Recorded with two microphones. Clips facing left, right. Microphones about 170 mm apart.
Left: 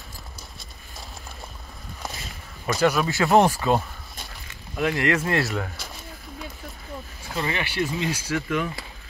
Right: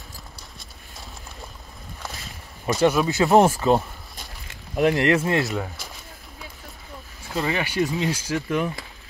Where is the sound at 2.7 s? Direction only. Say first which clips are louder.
Right 2 dB; 20° right (ahead or behind).